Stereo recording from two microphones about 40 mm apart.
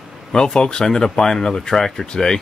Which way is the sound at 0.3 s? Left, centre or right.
Centre.